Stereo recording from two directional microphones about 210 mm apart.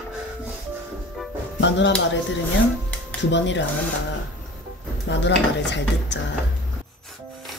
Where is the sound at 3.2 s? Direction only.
60° left (ahead or behind).